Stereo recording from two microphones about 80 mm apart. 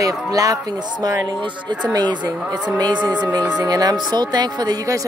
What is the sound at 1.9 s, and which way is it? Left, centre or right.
Speech, right.